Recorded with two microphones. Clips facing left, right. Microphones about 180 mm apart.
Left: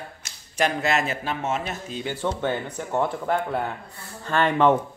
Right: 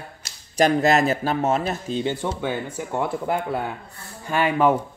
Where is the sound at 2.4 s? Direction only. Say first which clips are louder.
Even; 10° right (ahead or behind).